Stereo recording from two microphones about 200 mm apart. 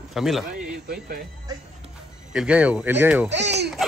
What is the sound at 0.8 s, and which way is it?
Speech, 50° right (ahead or behind).